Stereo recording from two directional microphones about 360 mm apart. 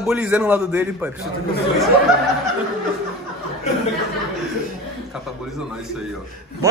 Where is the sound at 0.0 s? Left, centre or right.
Centre.